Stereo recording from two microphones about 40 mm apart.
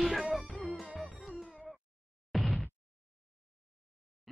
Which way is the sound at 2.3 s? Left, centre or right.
Centre.